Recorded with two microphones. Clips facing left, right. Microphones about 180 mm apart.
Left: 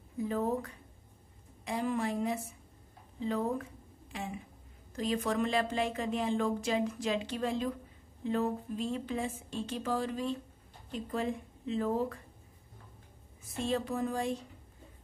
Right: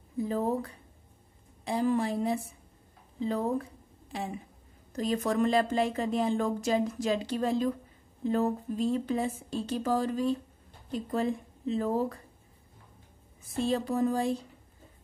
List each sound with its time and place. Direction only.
0.2 s speech: 35° right (ahead or behind)
4.9 s speech: 40° right (ahead or behind)
13.6 s speech: 35° right (ahead or behind)